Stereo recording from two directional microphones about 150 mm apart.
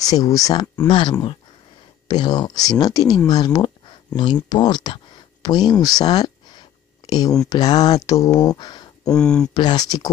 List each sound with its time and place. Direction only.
0.0 s speech: 25° left (ahead or behind)
9.0 s speech: 5° left (ahead or behind)
9.5 s speech: 25° left (ahead or behind)